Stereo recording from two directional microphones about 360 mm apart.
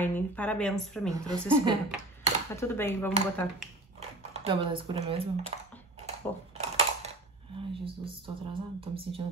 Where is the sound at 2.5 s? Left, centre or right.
Centre.